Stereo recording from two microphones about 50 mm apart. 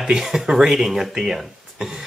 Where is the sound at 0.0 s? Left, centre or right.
Centre.